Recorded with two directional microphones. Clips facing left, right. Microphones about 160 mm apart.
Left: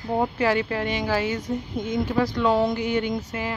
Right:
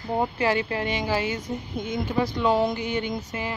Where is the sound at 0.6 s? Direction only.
5° right (ahead or behind).